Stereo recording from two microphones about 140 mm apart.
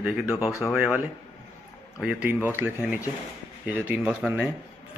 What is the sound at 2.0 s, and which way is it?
Speech, 10° right (ahead or behind).